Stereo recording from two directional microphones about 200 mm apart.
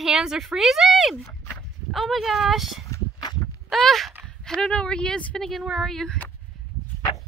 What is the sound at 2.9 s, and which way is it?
Walk, 20° left (ahead or behind).